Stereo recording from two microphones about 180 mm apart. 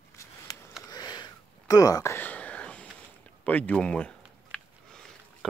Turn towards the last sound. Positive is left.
turn(degrees=5)  # may be behind; listen again after turning